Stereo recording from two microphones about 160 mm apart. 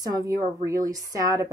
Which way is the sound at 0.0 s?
20° right (ahead or behind).